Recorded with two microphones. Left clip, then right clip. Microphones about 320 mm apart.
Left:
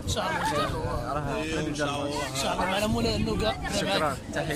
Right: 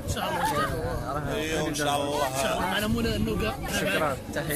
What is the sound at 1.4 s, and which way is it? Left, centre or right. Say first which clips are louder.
Speech: right 2 dB; centre.